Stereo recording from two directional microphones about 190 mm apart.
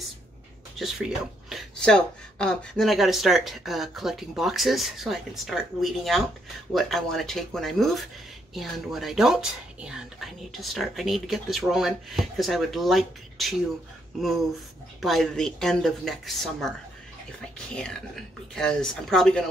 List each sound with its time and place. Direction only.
0.7 s speech: centre (ahead or behind)
15.0 s speech: centre (ahead or behind)